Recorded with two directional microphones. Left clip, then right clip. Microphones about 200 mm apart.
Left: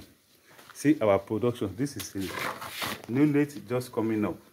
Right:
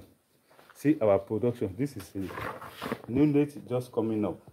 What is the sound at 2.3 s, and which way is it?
Speech, 50° left (ahead or behind).